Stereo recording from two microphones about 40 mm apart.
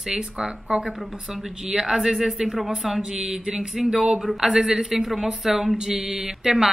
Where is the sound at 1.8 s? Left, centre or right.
Centre.